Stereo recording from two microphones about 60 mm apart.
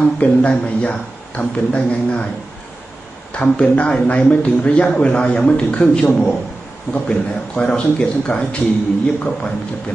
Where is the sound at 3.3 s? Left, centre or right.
Centre.